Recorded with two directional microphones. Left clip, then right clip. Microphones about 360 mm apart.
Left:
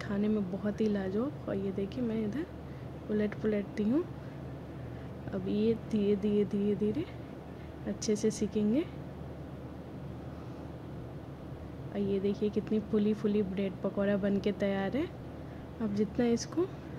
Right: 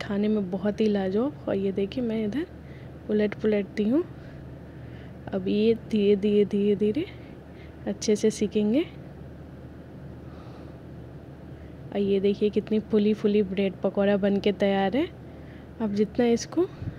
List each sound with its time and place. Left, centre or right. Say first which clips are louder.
0.0 s speech: right 6 dB; centre
5.3 s speech: right 8 dB; centre
11.9 s speech: right 9 dB; centre